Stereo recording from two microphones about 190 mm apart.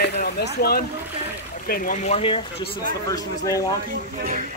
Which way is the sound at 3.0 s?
15° left (ahead or behind).